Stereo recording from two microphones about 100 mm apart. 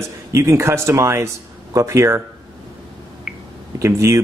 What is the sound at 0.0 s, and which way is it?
Speech, 30° right (ahead or behind).